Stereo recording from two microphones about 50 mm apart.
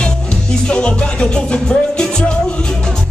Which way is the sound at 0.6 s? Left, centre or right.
Left.